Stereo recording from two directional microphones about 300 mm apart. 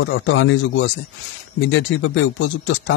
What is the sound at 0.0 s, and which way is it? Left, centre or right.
Speech, left.